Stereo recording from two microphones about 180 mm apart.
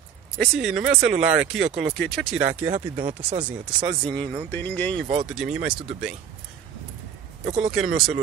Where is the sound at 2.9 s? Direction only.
30° right (ahead or behind).